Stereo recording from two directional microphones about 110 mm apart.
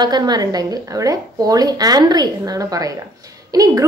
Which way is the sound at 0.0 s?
40° right (ahead or behind).